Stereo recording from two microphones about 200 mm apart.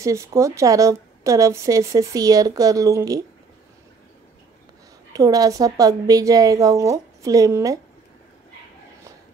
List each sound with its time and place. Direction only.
0.0 s a woman's voice: 15° right (ahead or behind)
5.1 s a woman's voice: 20° right (ahead or behind)